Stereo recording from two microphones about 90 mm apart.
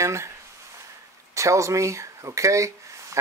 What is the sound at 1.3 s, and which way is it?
Speech, 35° right (ahead or behind).